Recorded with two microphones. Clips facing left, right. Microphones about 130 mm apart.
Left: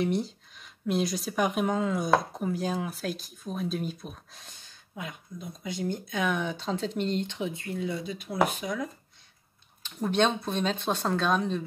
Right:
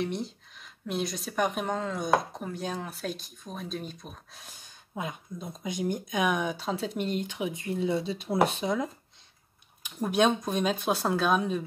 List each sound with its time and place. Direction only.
0.0 s speech: centre (ahead or behind)
4.9 s speech: 25° right (ahead or behind)
9.8 s speech: 10° right (ahead or behind)